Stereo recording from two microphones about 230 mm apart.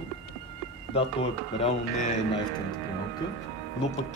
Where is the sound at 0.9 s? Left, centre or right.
Left.